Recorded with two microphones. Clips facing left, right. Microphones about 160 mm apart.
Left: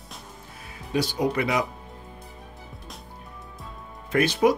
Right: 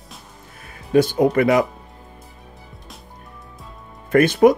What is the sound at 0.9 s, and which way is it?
Speech, 50° right (ahead or behind).